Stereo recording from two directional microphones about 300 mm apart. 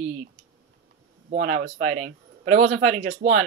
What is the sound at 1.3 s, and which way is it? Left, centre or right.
Speech, right.